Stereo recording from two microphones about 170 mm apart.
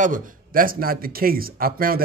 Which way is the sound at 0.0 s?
55° right (ahead or behind).